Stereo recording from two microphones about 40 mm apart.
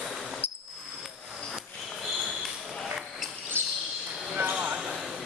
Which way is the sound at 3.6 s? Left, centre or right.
Right.